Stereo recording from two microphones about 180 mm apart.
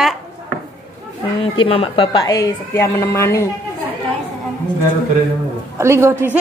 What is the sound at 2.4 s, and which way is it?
A woman's voice, 15° left (ahead or behind).